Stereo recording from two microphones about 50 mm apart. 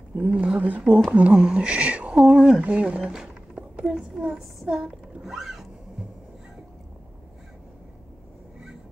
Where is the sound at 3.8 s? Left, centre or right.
Centre.